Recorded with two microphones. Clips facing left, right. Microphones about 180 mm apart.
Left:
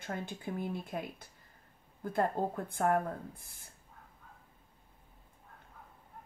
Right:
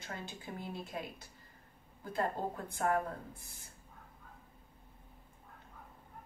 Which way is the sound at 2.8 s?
55° left (ahead or behind).